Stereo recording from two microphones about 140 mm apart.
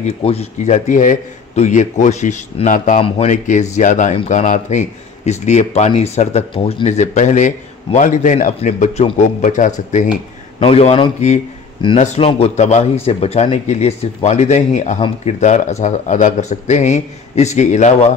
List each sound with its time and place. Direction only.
0.0 s speech: 50° left (ahead or behind)
10.6 s speech: 45° left (ahead or behind)